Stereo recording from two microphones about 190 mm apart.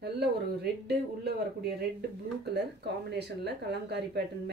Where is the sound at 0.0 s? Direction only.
60° right (ahead or behind).